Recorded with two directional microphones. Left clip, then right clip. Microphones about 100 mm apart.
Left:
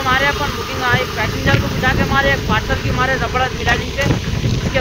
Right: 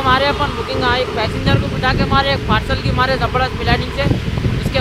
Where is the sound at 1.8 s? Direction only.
35° right (ahead or behind).